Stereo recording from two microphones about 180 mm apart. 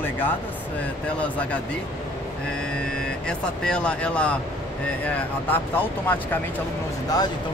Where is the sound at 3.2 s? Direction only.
5° left (ahead or behind).